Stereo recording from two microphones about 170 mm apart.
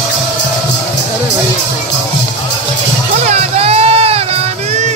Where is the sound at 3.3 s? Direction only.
35° right (ahead or behind).